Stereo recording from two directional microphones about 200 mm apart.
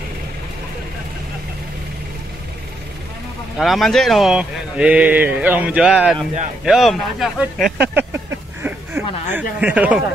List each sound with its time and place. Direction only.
3.5 s speech: centre (ahead or behind)
6.1 s speech: 35° right (ahead or behind)
6.6 s speech: centre (ahead or behind)
7.9 s a sound: 10° right (ahead or behind)